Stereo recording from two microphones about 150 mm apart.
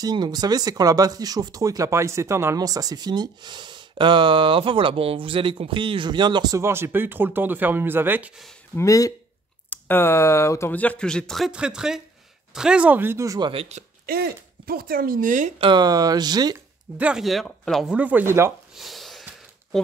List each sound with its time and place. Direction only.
0.0 s speech: 30° right (ahead or behind)
8.7 s speech: 20° left (ahead or behind); by 13.5 s 20° right (ahead or behind)
13.5 s speech: 45° right (ahead or behind)
14.0 s speech: 85° right; by 15.5 s 60° right (ahead or behind)
15.6 s speech: 30° right (ahead or behind)
17.0 s speech: 5° right (ahead or behind)
17.9 s speech: 10° right (ahead or behind)
18.8 s a sound: centre (ahead or behind)